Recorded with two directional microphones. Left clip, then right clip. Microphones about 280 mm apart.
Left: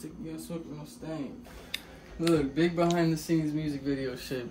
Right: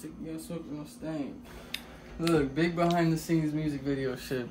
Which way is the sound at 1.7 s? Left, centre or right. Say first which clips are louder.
Left 2 dB; centre.